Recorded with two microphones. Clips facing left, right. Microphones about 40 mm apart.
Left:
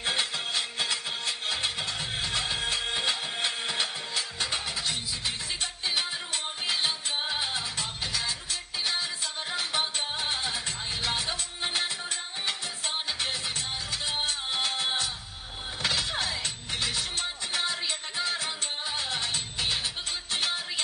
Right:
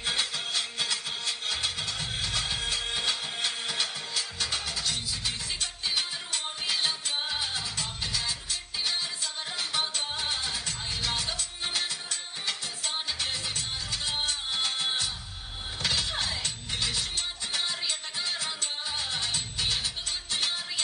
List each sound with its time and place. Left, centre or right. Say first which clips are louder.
0.0 s music: left 1 dB; left